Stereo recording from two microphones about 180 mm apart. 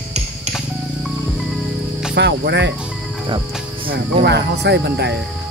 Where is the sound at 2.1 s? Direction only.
75° right (ahead or behind).